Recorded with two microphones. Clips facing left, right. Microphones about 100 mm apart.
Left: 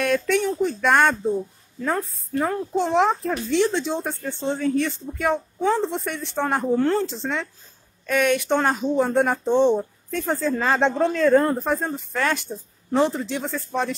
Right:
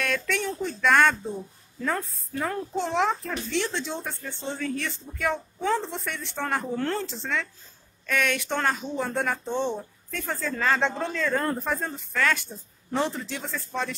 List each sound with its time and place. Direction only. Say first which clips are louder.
0.0 s a sound: left 7 dB; 20° left (ahead or behind)
0.4 s speech: left 7 dB; 10° left (ahead or behind)
0.7 s speech: even; 20° left (ahead or behind)